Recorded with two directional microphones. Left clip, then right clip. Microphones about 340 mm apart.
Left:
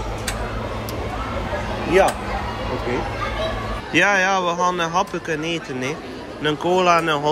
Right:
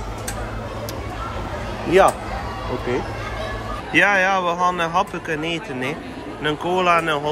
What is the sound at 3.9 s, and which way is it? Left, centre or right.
Speech, centre.